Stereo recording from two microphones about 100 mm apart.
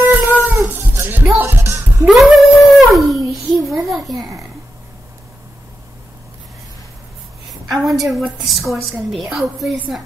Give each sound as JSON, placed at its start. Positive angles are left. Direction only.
{"t": 0.0, "sound": "music", "side_deg": -15}
{"t": 2.0, "sound": "dog", "side_deg": 0}
{"t": 7.7, "sound": "a woman's voice", "side_deg": 0}